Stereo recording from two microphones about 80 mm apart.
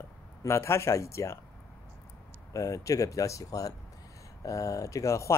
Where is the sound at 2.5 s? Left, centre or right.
Left.